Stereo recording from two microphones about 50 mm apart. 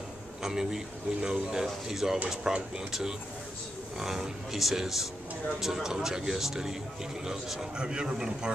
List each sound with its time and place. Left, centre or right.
0.4 s speech: centre
7.7 s speech: centre